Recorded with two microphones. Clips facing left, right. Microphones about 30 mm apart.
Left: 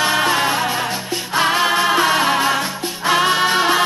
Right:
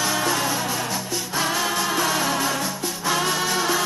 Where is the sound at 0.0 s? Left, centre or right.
Left.